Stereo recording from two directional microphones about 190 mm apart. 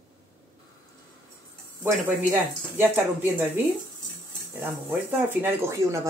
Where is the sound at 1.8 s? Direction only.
10° right (ahead or behind).